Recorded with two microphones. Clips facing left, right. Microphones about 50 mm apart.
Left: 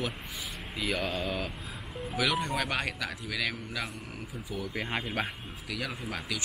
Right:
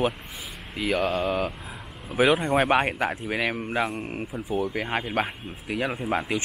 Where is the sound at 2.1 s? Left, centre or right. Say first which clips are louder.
Right 9 dB; right.